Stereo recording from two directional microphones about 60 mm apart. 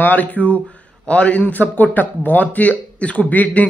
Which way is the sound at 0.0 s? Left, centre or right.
Left.